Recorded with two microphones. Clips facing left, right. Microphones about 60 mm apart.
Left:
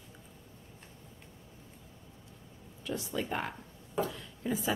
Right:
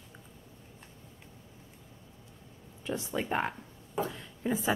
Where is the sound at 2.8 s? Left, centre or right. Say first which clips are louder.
Right 2 dB; right.